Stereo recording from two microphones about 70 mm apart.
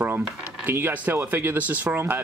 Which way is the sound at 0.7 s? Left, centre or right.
Right.